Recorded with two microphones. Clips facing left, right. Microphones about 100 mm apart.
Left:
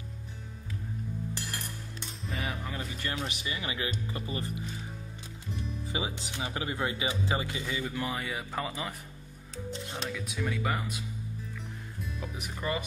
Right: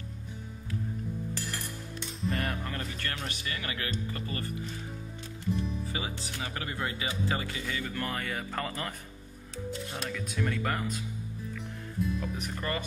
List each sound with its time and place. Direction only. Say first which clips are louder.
2.2 s music: right 4 dB; centre (ahead or behind)
3.3 s speech: left 1 dB; 15° left (ahead or behind)
5.9 s speech: left 1 dB; 20° left (ahead or behind)
10.0 s speech: right 1 dB; 5° left (ahead or behind)
11.5 s music: right 6 dB; 5° left (ahead or behind)